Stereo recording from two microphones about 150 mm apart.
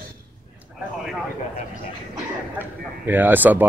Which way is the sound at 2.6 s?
15° right (ahead or behind).